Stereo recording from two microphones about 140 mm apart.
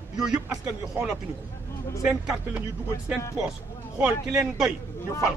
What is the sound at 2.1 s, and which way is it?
Speech, 5° right (ahead or behind).